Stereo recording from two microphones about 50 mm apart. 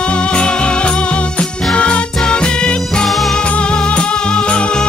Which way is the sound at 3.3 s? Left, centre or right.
Left.